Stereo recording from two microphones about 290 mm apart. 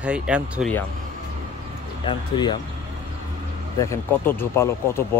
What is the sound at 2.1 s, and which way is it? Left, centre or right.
Speech, centre.